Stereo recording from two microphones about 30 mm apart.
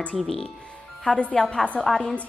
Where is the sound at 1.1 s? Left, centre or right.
Left.